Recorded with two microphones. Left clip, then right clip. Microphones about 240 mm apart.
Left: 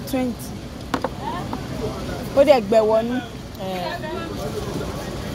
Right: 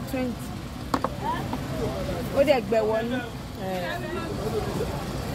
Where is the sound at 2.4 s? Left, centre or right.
Left.